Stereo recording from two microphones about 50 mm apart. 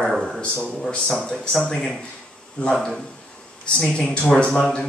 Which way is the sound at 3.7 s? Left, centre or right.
Left.